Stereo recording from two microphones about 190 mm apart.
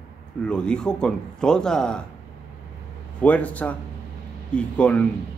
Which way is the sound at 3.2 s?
5° left (ahead or behind).